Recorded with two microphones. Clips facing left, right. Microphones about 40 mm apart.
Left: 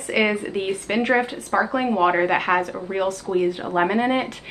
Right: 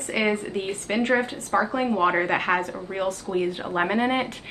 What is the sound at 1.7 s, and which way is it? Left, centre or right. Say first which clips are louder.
A woman's voice: left 5 dB; centre.